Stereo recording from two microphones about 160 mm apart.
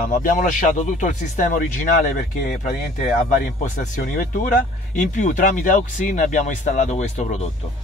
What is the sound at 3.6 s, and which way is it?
Speech, 50° left (ahead or behind).